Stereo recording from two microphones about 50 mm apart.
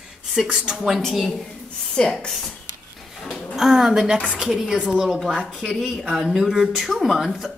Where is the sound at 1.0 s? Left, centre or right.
Centre.